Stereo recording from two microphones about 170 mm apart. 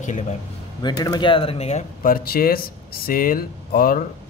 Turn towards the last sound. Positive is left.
turn(degrees=55)  # may be behind; listen again after turning